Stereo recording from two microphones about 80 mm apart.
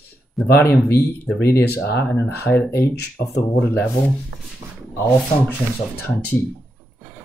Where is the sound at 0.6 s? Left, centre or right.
Left.